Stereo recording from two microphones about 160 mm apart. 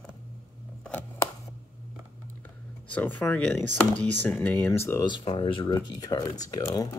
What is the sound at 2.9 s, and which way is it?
Speech, 10° left (ahead or behind).